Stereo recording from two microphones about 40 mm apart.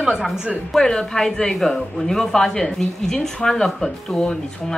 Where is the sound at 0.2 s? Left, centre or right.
Centre.